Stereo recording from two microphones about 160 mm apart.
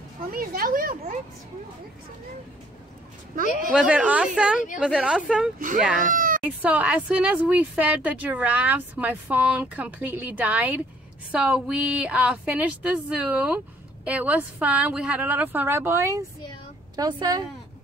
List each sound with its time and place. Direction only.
0.2 s speech: 65° right (ahead or behind)
3.3 s speech: 65° right (ahead or behind)
3.7 s a woman's voice: 5° right (ahead or behind)
6.1 s baby cry: 60° right (ahead or behind)
6.4 s a woman's voice: 10° right (ahead or behind)